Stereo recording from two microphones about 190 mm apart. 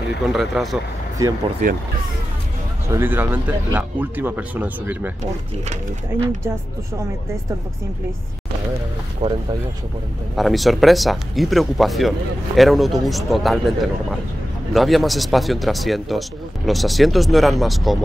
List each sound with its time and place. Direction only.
0.3 s speech: centre (ahead or behind)
1.6 s speech: 45° right (ahead or behind)
2.9 s speech: 10° right (ahead or behind)
9.2 s speech: 35° right (ahead or behind)
10.3 s speech: centre (ahead or behind)